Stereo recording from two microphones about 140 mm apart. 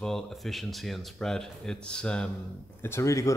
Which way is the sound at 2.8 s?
20° left (ahead or behind).